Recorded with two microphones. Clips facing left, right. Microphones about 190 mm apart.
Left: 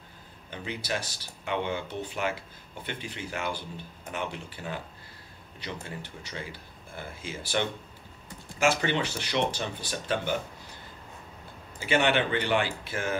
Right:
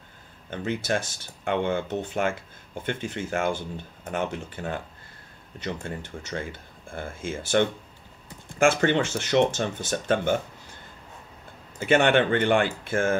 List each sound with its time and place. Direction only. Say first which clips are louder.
0.5 s speech: right 6 dB; 50° right (ahead or behind)
11.8 s speech: right 5 dB; 50° right (ahead or behind)